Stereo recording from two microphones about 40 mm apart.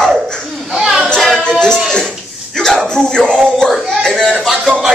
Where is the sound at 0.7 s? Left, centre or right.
Centre.